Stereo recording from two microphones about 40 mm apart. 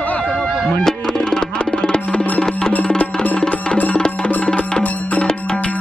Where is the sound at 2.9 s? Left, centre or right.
Left.